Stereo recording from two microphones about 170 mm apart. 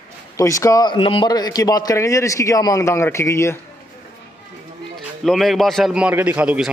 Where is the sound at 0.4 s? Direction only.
20° left (ahead or behind).